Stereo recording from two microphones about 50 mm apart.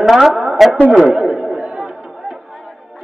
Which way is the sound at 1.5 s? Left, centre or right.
Centre.